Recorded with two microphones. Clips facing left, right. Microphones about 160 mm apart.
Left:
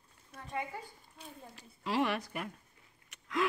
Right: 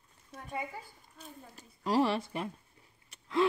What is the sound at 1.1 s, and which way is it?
Speech, 45° right (ahead or behind).